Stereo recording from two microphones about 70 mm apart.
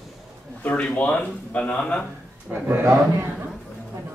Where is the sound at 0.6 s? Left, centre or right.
Left.